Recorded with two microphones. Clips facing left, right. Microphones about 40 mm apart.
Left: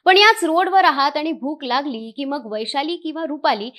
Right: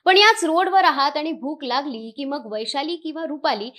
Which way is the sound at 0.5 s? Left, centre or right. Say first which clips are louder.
Left 2 dB; centre.